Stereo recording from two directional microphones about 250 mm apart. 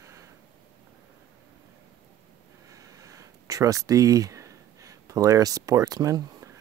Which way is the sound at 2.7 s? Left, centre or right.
Centre.